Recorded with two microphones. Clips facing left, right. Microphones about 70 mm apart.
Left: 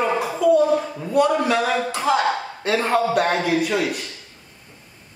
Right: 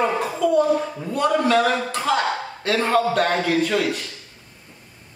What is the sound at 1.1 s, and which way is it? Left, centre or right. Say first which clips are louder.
A man's voice: left 1 dB; centre.